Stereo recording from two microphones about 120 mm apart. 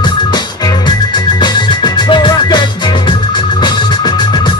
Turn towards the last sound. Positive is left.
turn(degrees=35)  # may be behind; listen again after turning